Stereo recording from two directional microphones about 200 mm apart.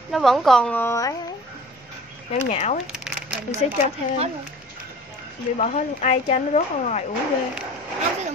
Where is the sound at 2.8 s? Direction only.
Centre (ahead or behind).